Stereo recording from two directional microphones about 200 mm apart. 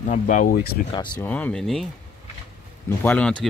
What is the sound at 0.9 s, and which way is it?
Speech, 25° left (ahead or behind).